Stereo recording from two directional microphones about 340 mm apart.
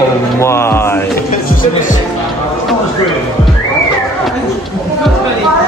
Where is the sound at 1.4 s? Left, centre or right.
Left.